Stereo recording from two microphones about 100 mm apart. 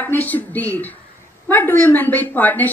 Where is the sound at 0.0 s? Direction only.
15° left (ahead or behind).